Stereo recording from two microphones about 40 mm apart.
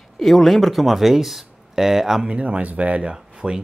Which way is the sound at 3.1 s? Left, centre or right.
Right.